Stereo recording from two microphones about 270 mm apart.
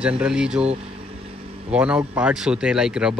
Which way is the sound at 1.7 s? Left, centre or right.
Centre.